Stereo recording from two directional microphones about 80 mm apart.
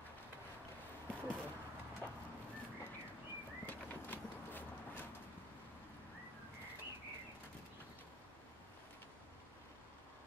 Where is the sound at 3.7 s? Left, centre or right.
Left.